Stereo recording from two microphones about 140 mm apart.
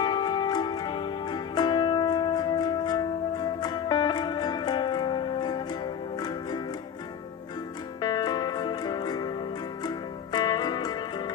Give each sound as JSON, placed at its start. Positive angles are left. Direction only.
{"t": 0.0, "sound": "music", "side_deg": 30}
{"t": 8.0, "sound": "music", "side_deg": 30}